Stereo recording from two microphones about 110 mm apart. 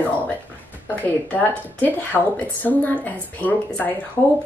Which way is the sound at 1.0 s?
15° left (ahead or behind).